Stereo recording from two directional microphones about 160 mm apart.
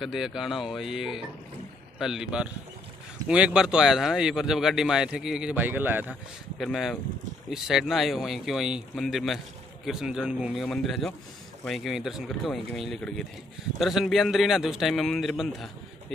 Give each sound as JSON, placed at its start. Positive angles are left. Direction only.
{"t": 0.0, "sound": "speech", "side_deg": -5}
{"t": 6.6, "sound": "speech", "side_deg": 0}